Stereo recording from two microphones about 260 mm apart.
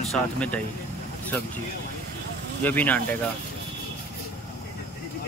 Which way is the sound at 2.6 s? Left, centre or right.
Centre.